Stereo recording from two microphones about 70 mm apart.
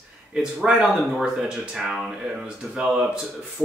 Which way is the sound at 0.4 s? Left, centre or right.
Centre.